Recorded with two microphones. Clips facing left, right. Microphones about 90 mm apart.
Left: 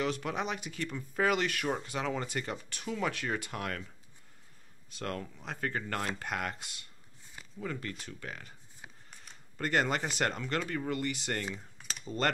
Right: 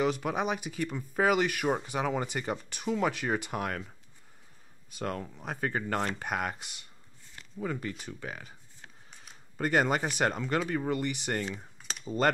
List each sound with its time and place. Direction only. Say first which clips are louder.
0.0 s speech: right 4 dB; 10° right (ahead or behind)
4.9 s speech: right 3 dB; 10° right (ahead or behind)
10.7 s speech: right 3 dB; 15° right (ahead or behind)
11.5 s typing: right 2 dB; 5° right (ahead or behind)